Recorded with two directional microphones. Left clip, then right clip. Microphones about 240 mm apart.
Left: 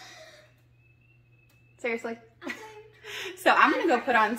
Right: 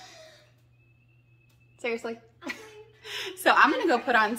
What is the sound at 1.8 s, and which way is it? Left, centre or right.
Speech, centre.